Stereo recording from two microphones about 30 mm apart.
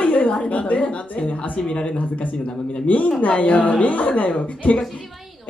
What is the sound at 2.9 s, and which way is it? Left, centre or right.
Speech, left.